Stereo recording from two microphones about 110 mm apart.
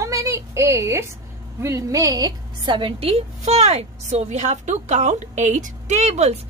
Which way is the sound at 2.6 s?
50° right (ahead or behind).